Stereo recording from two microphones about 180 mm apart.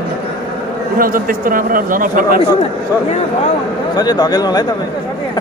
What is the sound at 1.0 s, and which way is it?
A man's voice, 50° right (ahead or behind).